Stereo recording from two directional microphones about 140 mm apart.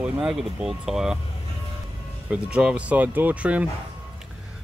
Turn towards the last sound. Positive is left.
turn(degrees=-10)  # may be behind; listen again after turning